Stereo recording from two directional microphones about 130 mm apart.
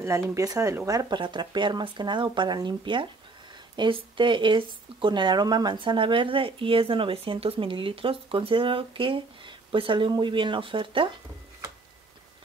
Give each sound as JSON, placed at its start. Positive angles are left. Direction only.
{"t": 0.0, "sound": "speech", "side_deg": -25}